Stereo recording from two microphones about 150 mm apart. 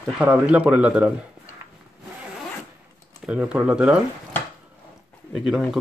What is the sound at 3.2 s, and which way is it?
Speech, 10° right (ahead or behind).